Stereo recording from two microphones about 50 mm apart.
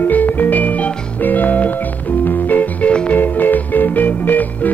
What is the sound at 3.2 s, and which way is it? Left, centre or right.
Music, left.